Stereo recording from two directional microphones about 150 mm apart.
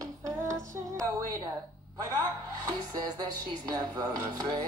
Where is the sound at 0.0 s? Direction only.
20° right (ahead or behind).